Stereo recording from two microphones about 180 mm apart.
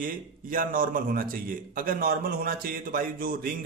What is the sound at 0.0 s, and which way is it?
A man's voice, 50° right (ahead or behind).